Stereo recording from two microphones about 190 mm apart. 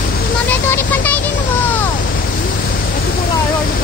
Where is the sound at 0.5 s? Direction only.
10° left (ahead or behind).